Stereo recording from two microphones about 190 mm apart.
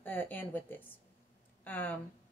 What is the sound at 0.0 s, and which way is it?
Speech, 10° left (ahead or behind).